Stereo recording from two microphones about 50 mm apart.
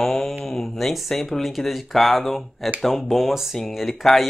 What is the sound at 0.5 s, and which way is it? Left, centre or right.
Speech, centre.